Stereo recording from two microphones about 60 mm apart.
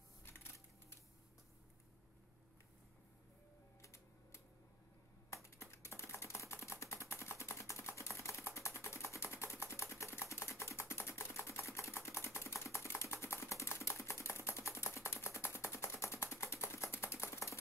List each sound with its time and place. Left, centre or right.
0.2 s a sound: left
3.8 s music: left
5.3 s typing: left